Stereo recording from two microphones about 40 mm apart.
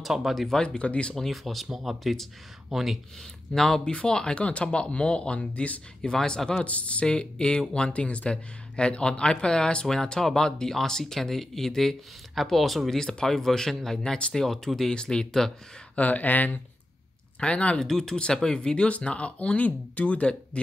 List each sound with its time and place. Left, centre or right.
0.0 s speech: centre
0.7 s speech: left
1.1 s speech: centre
3.5 s speech: centre
3.9 s speech: left
5.5 s speech: left
6.2 s speech: centre
6.6 s speech: left; by 13.9 s centre
14.0 s speech: left
14.3 s speech: centre
16.0 s speech: left
17.4 s speech: left
17.8 s speech: centre
18.9 s speech: left